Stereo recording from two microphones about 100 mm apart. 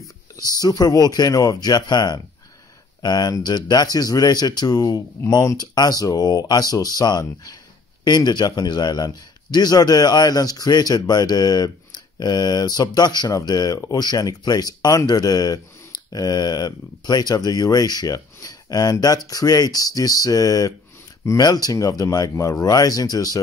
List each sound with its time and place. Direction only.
0.6 s a man's voice: 40° left (ahead or behind)